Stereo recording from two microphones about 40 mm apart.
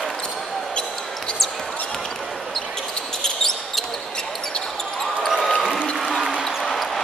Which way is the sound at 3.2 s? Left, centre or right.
Centre.